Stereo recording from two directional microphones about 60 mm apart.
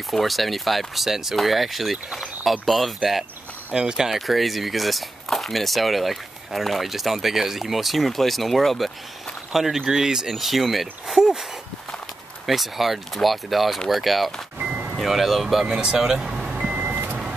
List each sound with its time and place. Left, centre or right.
0.1 s speech: centre
3.7 s speech: centre
12.4 s speech: centre
14.6 s music: right
15.0 s speech: centre
15.6 s speech: centre
16.7 s vehicle: right